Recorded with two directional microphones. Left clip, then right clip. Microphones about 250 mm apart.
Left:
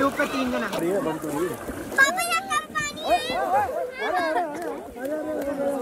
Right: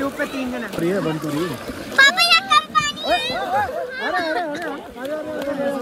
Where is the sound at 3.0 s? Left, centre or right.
Right.